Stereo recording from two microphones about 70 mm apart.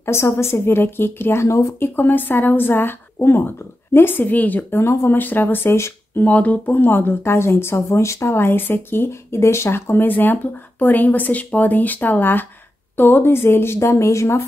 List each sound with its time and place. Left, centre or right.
0.0 s speech: left
1.8 s speech: left
6.2 s speech: left